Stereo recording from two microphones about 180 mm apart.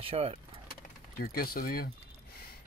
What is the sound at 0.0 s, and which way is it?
Speech, 30° right (ahead or behind).